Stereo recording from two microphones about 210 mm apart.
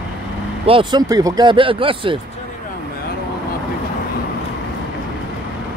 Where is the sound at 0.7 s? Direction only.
20° right (ahead or behind).